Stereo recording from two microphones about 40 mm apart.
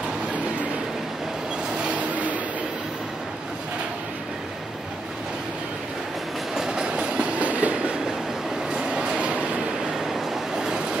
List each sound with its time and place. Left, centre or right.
6.5 s train: centre; by 7.7 s right
8.6 s train: right
10.0 s train: centre